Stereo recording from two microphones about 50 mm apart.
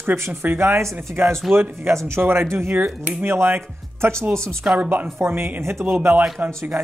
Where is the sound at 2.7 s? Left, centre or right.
Right.